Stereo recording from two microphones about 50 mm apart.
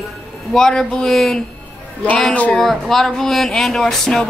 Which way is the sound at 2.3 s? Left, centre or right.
Left.